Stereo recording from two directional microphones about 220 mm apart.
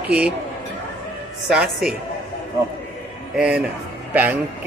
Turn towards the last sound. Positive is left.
turn(degrees=-5)  # may be behind; listen again after turning